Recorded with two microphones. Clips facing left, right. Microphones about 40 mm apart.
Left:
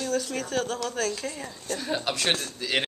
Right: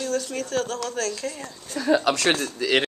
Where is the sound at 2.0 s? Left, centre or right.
Right.